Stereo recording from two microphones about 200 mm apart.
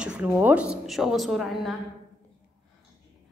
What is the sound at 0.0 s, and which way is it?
A woman's voice, 5° right (ahead or behind).